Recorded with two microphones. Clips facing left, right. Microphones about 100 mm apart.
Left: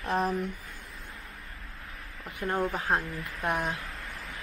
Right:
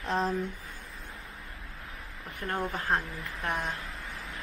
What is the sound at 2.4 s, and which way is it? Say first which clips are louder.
Speech: left 3 dB; 5° left (ahead or behind).